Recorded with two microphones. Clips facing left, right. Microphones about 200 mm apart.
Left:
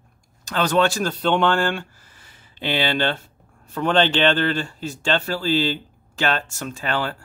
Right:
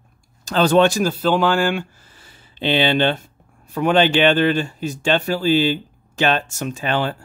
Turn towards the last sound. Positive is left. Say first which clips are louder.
# right 4 dB
turn(degrees=-20)  # may be behind; listen again after turning